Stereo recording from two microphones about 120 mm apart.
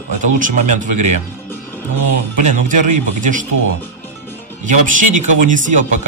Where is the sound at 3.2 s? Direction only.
90° right.